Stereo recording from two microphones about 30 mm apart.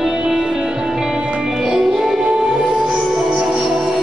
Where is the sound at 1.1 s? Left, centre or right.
Right.